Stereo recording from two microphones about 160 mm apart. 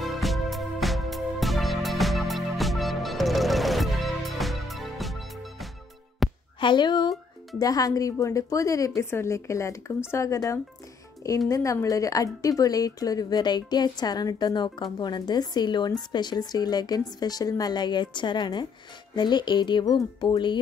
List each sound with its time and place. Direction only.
0.0 s music: centre (ahead or behind)
6.6 s a woman's voice: 30° left (ahead or behind)